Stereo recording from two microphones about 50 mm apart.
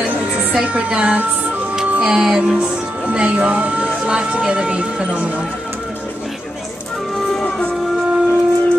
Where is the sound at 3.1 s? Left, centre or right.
Right.